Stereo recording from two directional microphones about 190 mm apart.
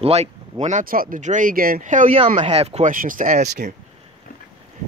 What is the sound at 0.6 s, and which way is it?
Speech, 45° right (ahead or behind).